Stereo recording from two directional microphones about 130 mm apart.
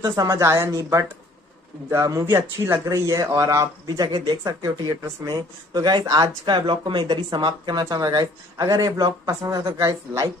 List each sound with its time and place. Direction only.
0.0 s speech: 25° right (ahead or behind)